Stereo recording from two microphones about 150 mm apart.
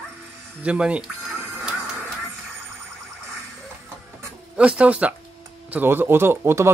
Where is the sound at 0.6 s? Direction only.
10° right (ahead or behind).